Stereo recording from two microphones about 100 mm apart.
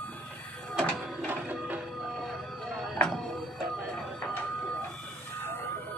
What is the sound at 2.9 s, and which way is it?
Music, 5° left (ahead or behind).